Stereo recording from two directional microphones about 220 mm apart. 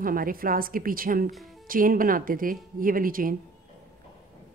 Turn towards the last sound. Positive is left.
turn(degrees=-40)  # may be behind; listen again after turning